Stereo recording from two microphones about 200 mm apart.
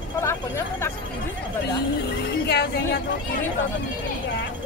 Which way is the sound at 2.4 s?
55° left (ahead or behind).